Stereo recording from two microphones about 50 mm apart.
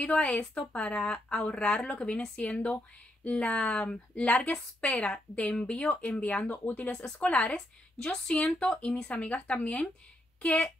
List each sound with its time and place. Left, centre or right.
0.0 s speech: left
6.9 s speech: left
7.5 s a woman's voice: centre